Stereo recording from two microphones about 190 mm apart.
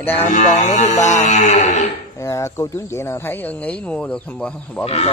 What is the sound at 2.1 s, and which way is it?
Speech, 15° left (ahead or behind).